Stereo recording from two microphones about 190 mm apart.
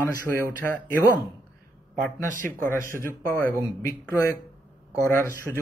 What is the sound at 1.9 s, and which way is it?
Speech, 45° right (ahead or behind).